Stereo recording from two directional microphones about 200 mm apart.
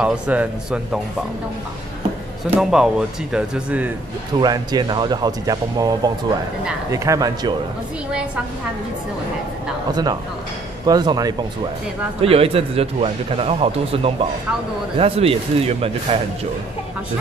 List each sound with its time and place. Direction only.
0.0 s speech: 5° right (ahead or behind)
2.5 s speech: 5° right (ahead or behind)
4.4 s a man's voice: 20° right (ahead or behind)
10.9 s a man's voice: 20° right (ahead or behind)